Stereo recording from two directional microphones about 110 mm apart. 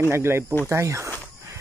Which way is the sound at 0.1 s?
25° right (ahead or behind).